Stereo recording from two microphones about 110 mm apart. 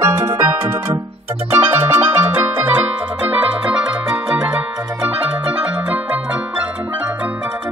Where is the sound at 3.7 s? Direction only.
10° right (ahead or behind).